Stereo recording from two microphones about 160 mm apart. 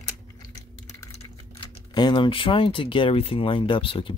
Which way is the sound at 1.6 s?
30° left (ahead or behind).